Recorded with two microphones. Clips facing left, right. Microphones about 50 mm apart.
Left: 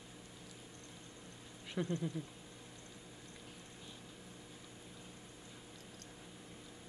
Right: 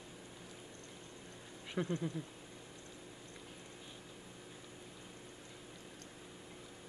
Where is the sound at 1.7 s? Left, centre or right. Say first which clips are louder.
Right 1 dB; centre.